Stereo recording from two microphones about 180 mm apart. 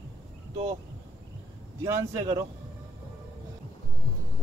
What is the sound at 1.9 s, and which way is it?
Speech, 15° right (ahead or behind).